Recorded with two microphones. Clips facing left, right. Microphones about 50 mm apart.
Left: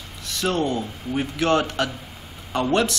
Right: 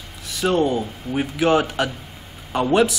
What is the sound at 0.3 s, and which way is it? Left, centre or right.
A man's voice, centre.